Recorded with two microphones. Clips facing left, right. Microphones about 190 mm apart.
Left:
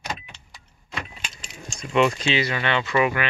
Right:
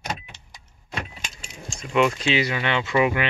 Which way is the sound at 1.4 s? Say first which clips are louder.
Even; 5° right (ahead or behind).